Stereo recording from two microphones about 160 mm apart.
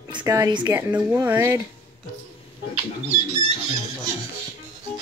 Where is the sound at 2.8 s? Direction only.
40° right (ahead or behind).